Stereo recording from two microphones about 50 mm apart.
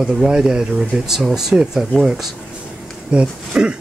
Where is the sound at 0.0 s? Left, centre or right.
Centre.